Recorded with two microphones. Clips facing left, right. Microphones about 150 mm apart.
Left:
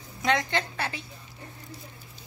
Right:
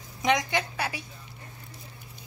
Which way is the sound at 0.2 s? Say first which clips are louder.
Right 1 dB; 15° right (ahead or behind).